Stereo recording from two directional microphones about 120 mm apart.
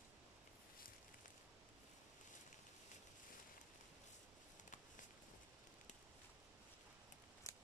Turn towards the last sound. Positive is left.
turn(degrees=25)  # may be behind; listen again after turning